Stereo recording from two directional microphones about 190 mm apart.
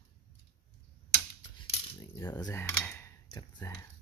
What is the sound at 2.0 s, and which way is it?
Cutlery, 15° left (ahead or behind).